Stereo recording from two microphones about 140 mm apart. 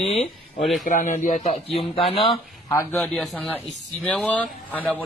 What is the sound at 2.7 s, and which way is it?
Speech, 25° left (ahead or behind).